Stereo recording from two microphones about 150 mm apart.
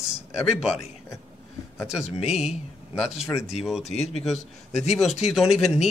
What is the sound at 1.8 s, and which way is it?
Speech, 5° right (ahead or behind).